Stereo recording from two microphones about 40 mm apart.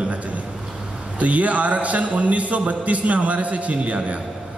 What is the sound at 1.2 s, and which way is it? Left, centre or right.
A man's voice, right.